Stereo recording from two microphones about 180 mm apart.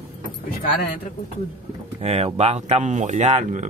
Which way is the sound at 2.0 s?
35° right (ahead or behind).